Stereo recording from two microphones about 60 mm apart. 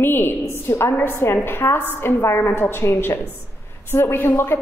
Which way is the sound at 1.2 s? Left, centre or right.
Left.